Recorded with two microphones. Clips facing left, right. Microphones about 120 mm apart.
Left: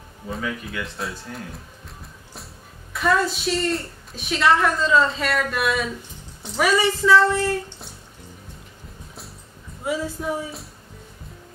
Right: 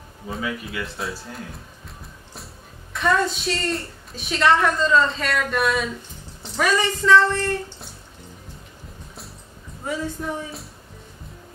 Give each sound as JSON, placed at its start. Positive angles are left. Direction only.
{"t": 0.3, "sound": "a woman's voice", "side_deg": -5}
{"t": 9.8, "sound": "a woman's voice", "side_deg": 5}